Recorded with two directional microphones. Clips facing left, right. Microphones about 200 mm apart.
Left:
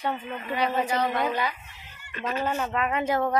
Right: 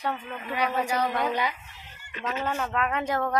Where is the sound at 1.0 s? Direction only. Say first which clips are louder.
Left 1 dB; 5° left (ahead or behind).